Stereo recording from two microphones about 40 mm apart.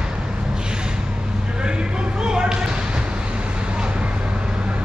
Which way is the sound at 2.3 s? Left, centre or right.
Centre.